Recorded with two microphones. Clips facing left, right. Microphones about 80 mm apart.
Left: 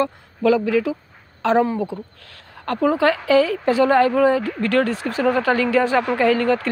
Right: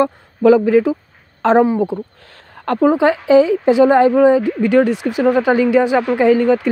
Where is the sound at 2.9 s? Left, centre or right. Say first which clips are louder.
Right 4 dB; right.